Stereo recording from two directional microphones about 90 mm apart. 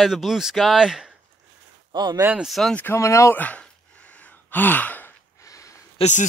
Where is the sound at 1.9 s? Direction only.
55° right (ahead or behind).